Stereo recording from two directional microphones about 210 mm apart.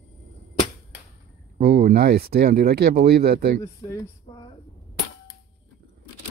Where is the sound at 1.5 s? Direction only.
50° right (ahead or behind).